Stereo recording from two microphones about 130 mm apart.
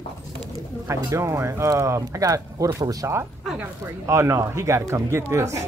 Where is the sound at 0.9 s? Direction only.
20° right (ahead or behind).